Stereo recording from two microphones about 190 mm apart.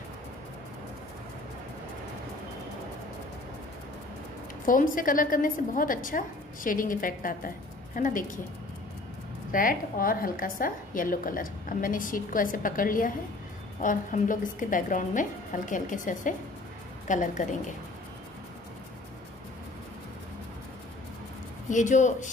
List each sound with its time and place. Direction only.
4.6 s a woman's voice: 45° left (ahead or behind)
9.5 s a woman's voice: 45° left (ahead or behind)
21.6 s speech: 40° left (ahead or behind)